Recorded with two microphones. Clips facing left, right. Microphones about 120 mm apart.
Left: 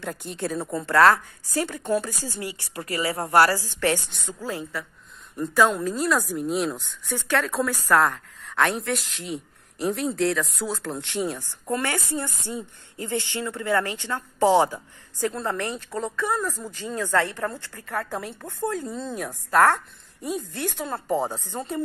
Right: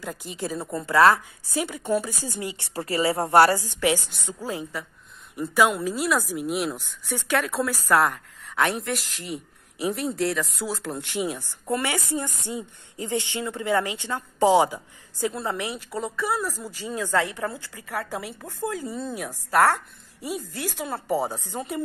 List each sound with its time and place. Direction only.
0.0 s speech: centre (ahead or behind)
2.6 s a woman's voice: 30° right (ahead or behind); by 21.8 s 10° right (ahead or behind)